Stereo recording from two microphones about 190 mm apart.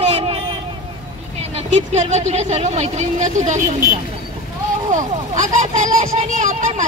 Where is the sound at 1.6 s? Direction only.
35° right (ahead or behind).